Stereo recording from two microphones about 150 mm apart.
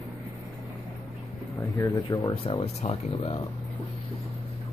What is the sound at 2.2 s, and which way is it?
Speech, 35° left (ahead or behind).